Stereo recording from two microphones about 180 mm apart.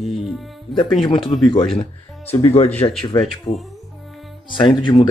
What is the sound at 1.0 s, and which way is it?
Speech, 25° left (ahead or behind).